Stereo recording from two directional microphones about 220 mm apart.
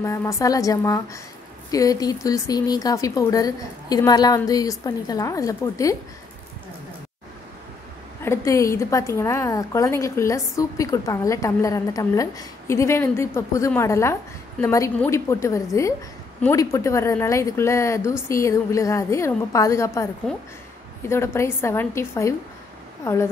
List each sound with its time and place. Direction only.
0.0 s a woman's voice: 15° left (ahead or behind)
8.2 s a woman's voice: 15° left (ahead or behind)
21.1 s a woman's voice: 10° left (ahead or behind)